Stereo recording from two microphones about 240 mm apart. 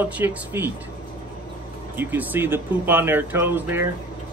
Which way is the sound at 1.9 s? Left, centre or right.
Centre.